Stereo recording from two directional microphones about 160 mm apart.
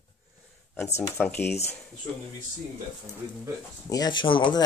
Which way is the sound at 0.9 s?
15° left (ahead or behind).